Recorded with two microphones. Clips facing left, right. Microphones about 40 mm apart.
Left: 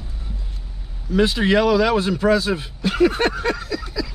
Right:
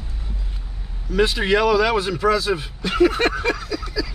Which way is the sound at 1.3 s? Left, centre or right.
Centre.